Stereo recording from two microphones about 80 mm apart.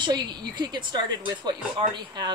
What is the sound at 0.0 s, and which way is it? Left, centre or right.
A woman's voice, right.